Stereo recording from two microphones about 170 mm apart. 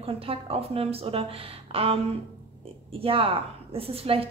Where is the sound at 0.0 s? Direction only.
35° right (ahead or behind).